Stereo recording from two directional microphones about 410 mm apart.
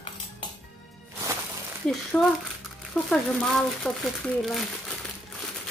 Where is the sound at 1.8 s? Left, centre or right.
Centre.